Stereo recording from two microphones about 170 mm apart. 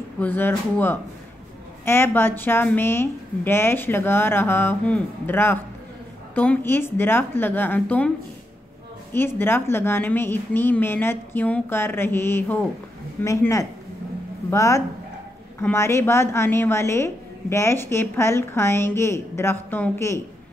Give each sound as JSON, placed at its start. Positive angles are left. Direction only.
{"t": 0.2, "sound": "a woman's voice", "side_deg": 10}
{"t": 9.1, "sound": "a woman's voice", "side_deg": 15}